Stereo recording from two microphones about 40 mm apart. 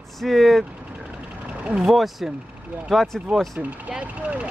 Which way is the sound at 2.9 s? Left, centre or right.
Centre.